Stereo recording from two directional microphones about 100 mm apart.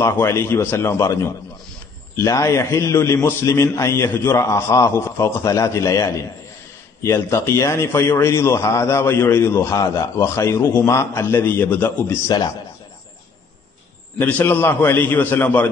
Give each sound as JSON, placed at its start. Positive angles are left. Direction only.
{"t": 0.0, "sound": "a man's voice", "side_deg": 25}
{"t": 12.3, "sound": "speech", "side_deg": 40}
{"t": 14.1, "sound": "a man's voice", "side_deg": 20}